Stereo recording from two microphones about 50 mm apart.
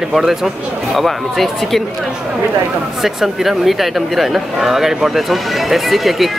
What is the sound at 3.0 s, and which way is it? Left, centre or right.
Speech, centre.